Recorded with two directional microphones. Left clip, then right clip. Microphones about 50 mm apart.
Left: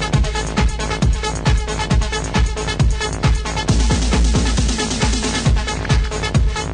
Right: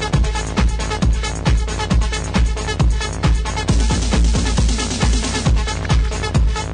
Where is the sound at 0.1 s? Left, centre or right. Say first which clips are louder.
Left 1 dB; left.